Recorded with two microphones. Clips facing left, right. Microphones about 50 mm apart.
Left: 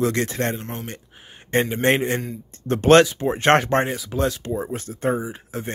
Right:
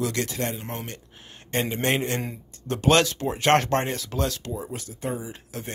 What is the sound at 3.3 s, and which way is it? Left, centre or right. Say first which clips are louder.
Speech: left 1 dB; left.